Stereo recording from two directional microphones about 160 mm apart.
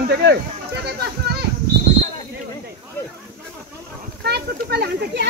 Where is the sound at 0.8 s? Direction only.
80° right.